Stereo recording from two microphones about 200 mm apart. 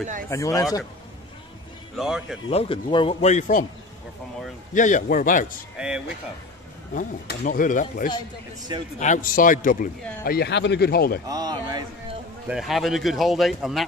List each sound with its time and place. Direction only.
0.3 s speech: 15° left (ahead or behind)
2.0 s speech: 5° right (ahead or behind)
2.5 s speech: 25° left (ahead or behind)
4.7 s speech: 40° left (ahead or behind)
5.8 s speech: 5° right (ahead or behind)
6.9 s speech: 40° left (ahead or behind)
8.7 s speech: 20° right (ahead or behind)
9.0 s speech: 40° left (ahead or behind)
10.2 s speech: 50° left (ahead or behind)
11.2 s speech: 20° right (ahead or behind)
12.4 s speech: centre (ahead or behind)